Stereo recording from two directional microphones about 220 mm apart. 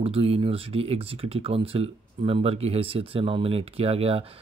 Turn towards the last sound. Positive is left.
turn(degrees=-25)  # may be behind; listen again after turning